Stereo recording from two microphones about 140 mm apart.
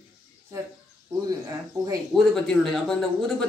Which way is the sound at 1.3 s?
25° right (ahead or behind).